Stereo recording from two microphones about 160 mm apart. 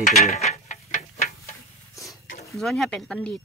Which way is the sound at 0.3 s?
45° left (ahead or behind).